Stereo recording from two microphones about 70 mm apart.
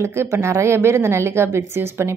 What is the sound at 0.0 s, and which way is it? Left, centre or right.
A woman's voice, right.